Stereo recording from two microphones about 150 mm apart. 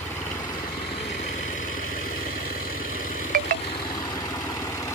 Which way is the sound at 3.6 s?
30° left (ahead or behind).